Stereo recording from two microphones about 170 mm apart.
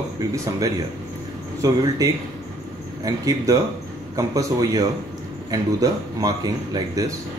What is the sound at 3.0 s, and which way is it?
Speech, 20° right (ahead or behind).